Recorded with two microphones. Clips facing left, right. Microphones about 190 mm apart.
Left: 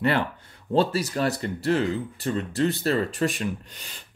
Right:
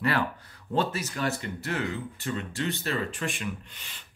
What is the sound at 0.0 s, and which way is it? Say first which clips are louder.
Speech: left 3 dB; 25° left (ahead or behind).